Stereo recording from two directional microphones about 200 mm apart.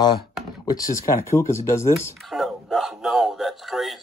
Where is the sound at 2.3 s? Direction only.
Centre (ahead or behind).